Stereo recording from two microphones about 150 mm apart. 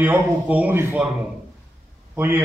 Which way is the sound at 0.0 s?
10° right (ahead or behind).